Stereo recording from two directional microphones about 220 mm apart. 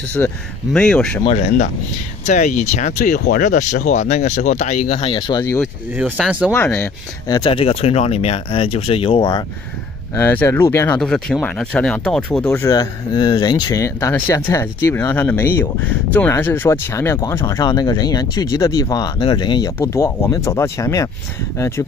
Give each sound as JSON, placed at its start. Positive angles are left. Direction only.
{"t": 0.2, "sound": "speech", "side_deg": 10}
{"t": 1.2, "sound": "speech", "side_deg": 30}
{"t": 5.9, "sound": "speech", "side_deg": -5}
{"t": 6.5, "sound": "speech", "side_deg": 10}
{"t": 10.1, "sound": "speech", "side_deg": 10}
{"t": 12.6, "sound": "speech", "side_deg": 20}